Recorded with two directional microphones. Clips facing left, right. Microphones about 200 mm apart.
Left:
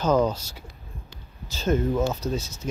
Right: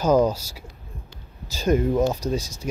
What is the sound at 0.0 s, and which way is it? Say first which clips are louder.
Speech: right 3 dB; 10° right (ahead or behind).